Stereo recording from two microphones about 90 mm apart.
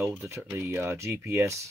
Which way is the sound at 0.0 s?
30° right (ahead or behind).